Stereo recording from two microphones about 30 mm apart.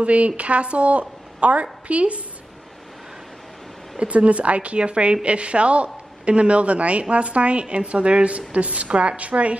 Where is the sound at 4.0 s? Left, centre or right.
Right.